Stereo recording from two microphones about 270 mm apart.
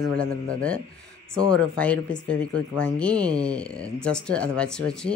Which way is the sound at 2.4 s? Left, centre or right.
Left.